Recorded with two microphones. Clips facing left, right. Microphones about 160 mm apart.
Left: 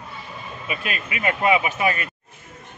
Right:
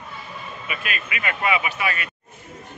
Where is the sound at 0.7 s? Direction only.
30° left (ahead or behind).